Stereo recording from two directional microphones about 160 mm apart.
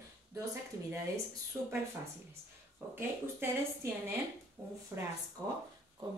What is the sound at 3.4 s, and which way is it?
Speech, 15° right (ahead or behind).